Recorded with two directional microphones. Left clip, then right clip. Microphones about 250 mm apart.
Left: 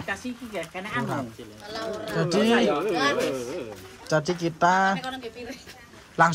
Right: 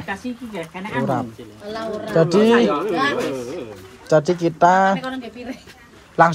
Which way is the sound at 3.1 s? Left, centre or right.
Centre.